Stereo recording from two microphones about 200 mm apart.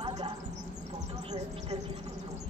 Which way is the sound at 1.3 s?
30° right (ahead or behind).